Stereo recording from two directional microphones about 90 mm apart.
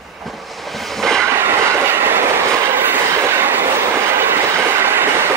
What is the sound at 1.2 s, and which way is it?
Train, 25° right (ahead or behind).